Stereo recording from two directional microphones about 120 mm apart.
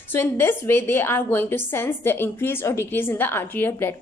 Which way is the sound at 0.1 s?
20° left (ahead or behind).